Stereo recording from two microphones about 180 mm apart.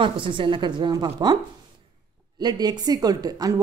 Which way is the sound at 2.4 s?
20° right (ahead or behind).